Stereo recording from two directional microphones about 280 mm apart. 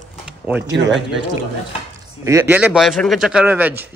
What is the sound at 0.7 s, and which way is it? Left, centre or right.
Speech, right.